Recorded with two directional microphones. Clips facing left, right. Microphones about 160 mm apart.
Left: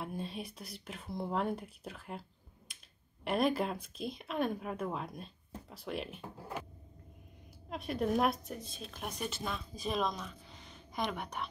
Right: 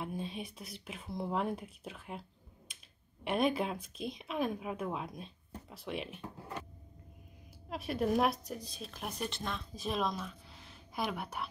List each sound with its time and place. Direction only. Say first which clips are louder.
0.0 s speech: right 1 dB; centre (ahead or behind)
3.3 s speech: even; centre (ahead or behind)
7.7 s speech: right 1 dB; 5° right (ahead or behind)